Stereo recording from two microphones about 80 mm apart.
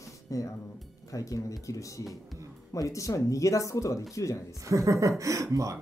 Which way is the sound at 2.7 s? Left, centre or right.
Left.